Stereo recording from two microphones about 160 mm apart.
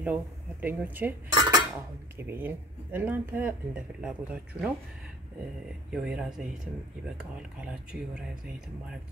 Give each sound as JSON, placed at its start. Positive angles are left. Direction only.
{"t": 0.0, "sound": "speech", "side_deg": -10}
{"t": 1.3, "sound": "dishes", "side_deg": -25}
{"t": 2.1, "sound": "speech", "side_deg": -10}
{"t": 5.9, "sound": "speech", "side_deg": -5}